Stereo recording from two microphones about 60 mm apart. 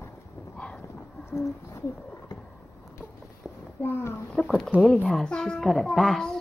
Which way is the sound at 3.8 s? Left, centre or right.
Left.